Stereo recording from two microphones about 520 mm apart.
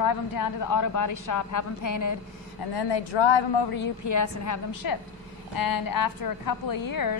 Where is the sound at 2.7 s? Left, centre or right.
Left.